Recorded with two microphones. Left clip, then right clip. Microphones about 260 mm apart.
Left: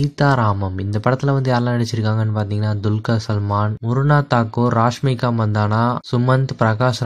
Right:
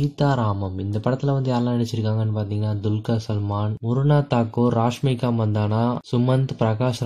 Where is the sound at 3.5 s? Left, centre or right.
Left.